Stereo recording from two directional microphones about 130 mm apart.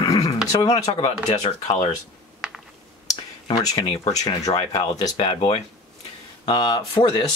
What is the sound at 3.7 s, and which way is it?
Speech, 40° left (ahead or behind).